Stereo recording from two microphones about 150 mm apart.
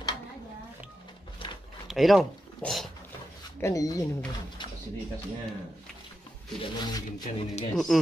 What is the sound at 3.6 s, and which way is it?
Speech, 20° left (ahead or behind).